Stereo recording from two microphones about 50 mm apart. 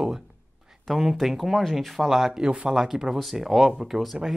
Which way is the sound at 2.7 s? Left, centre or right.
Centre.